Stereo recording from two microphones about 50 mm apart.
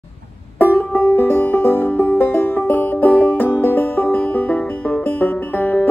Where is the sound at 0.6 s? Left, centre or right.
Left.